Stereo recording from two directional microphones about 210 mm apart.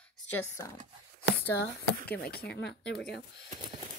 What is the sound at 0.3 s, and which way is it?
Speech, 15° left (ahead or behind).